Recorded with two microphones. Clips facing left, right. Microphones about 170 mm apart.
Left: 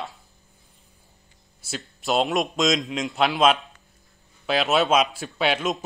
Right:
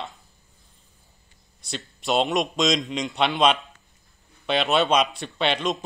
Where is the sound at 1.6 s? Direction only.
Centre (ahead or behind).